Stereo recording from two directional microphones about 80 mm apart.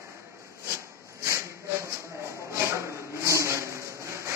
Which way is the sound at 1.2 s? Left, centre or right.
Right.